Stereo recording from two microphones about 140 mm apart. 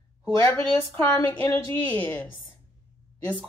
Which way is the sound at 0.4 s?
10° left (ahead or behind).